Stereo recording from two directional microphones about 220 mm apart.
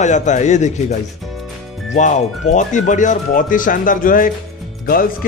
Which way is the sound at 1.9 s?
35° left (ahead or behind).